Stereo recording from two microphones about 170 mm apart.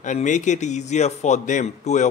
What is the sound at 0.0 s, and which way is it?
A man's voice, 45° left (ahead or behind).